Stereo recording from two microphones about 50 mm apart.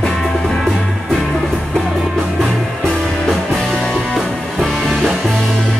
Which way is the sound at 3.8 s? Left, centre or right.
Centre.